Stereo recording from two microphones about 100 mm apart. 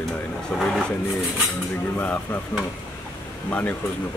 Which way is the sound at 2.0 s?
15° left (ahead or behind).